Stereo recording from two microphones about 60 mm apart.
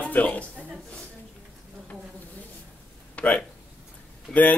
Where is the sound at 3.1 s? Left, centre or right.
Left.